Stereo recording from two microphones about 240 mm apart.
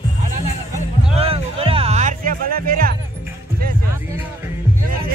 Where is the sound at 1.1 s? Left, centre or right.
Right.